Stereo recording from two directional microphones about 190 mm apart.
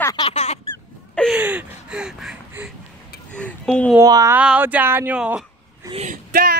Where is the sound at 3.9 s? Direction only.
15° right (ahead or behind).